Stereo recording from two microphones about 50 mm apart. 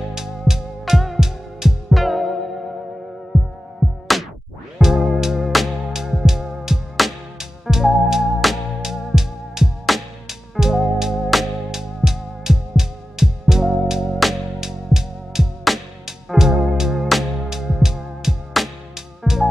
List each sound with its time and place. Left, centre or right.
0.1 s music: centre
4.1 s music: centre